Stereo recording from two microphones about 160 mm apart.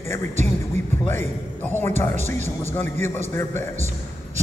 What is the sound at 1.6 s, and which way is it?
Speech, 15° left (ahead or behind).